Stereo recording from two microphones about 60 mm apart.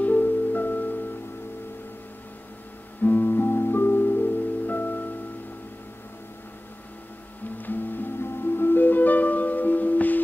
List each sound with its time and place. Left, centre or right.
0.0 s music: left
3.0 s music: left
7.5 s music: left